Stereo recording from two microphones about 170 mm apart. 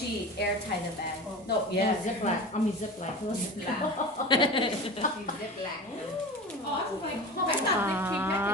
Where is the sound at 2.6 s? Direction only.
45° left (ahead or behind).